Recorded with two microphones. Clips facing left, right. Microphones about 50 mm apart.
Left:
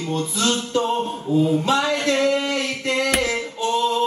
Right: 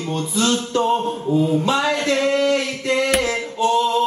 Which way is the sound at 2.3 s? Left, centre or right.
Centre.